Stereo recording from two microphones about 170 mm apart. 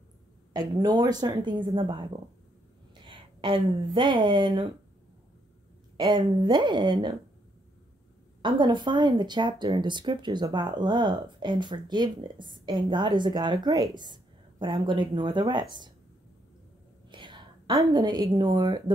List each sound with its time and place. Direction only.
0.5 s speech: 25° right (ahead or behind)
3.1 s speech: 30° right (ahead or behind)
5.9 s speech: 25° right (ahead or behind)
8.4 s speech: 30° right (ahead or behind)
17.1 s a woman's voice: 30° right (ahead or behind)